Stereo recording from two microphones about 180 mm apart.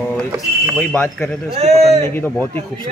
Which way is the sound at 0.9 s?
15° left (ahead or behind).